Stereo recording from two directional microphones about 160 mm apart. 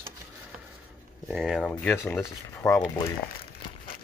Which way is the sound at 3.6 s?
35° left (ahead or behind).